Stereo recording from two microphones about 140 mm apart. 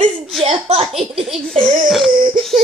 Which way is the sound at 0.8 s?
Centre (ahead or behind).